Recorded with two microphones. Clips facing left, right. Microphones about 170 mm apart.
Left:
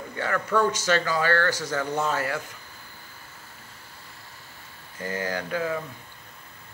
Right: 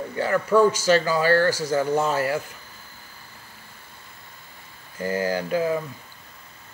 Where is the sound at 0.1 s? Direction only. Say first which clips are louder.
Right 5 dB; 30° right (ahead or behind).